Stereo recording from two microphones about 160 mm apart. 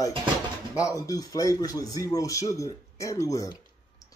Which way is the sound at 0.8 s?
20° left (ahead or behind).